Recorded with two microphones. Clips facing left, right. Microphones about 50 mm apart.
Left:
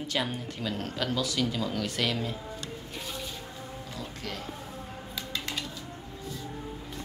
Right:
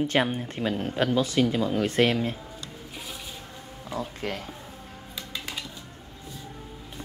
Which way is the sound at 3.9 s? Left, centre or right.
Right.